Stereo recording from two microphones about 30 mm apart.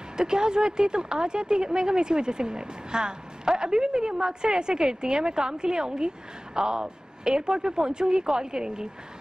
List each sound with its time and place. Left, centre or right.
0.2 s speech: right